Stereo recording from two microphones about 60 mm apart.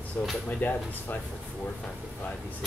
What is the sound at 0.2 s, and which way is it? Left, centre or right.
Speech, left.